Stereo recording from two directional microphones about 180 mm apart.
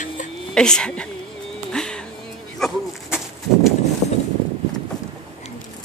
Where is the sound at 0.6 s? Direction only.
5° left (ahead or behind).